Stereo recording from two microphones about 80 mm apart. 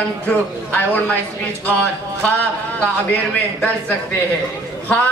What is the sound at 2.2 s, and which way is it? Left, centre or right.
Speech, centre.